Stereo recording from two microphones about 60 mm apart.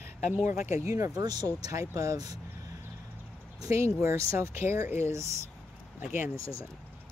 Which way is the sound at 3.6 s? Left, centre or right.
Right.